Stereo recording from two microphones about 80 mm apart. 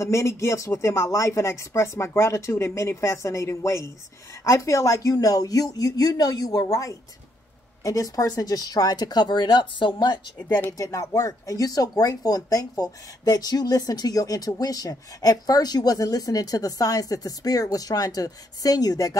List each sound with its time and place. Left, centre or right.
0.0 s speech: left
10.8 s speech: left